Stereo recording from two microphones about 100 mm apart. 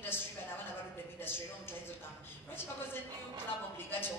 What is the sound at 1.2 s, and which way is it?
A woman's voice, 20° left (ahead or behind).